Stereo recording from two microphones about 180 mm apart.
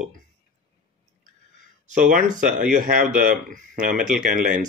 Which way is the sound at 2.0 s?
45° right (ahead or behind).